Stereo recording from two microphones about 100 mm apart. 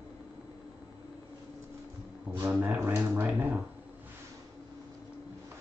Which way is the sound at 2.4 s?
15° right (ahead or behind).